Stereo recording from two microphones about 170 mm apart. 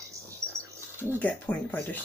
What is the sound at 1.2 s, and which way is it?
Speech, 10° left (ahead or behind).